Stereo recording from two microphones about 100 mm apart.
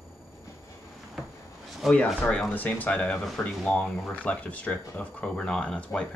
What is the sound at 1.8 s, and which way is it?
Speech, 10° left (ahead or behind).